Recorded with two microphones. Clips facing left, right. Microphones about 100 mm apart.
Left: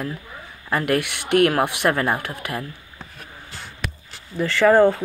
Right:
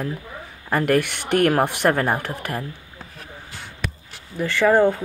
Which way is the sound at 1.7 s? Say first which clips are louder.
Right 1 dB; 40° right (ahead or behind).